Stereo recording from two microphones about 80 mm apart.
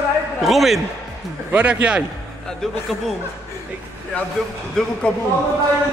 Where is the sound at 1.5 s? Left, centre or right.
Centre.